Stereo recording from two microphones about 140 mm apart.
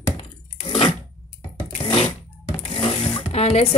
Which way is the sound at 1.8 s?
35° left (ahead or behind).